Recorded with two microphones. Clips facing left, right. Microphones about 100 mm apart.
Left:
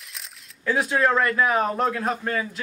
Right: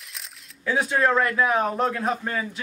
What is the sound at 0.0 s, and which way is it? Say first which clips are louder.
Speech: even; centre (ahead or behind).